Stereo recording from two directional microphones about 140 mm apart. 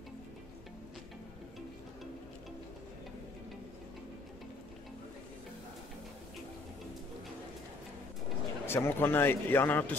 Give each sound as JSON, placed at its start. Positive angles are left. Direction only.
{"t": 8.6, "sound": "speech", "side_deg": 15}